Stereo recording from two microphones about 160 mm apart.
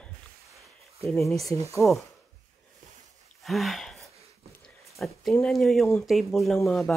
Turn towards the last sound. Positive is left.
turn(degrees=0)  # may be behind; listen again after turning